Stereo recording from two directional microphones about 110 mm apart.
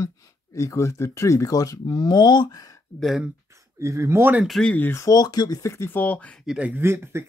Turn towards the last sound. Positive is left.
turn(degrees=-25)  # may be behind; listen again after turning